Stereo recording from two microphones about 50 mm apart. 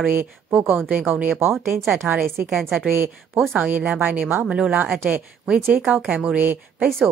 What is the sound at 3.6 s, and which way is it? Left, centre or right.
Speech, right.